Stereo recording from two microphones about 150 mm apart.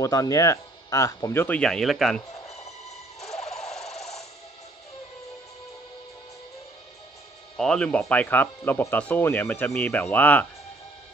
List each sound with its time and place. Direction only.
0.0 s speech: 20° left (ahead or behind)
1.6 s speech: 5° left (ahead or behind)
3.3 s music: 45° left (ahead or behind)
3.8 s fowl: 45° left (ahead or behind)
7.5 s speech: 5° left (ahead or behind)